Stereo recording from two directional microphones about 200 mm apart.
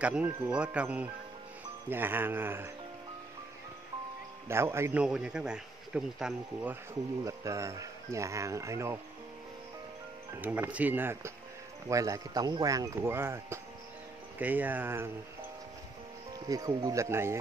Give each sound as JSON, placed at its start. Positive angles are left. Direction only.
{"t": 0.0, "sound": "speech", "side_deg": -5}
{"t": 4.5, "sound": "a man's voice", "side_deg": -10}
{"t": 10.4, "sound": "speech", "side_deg": -10}
{"t": 16.3, "sound": "speech", "side_deg": -20}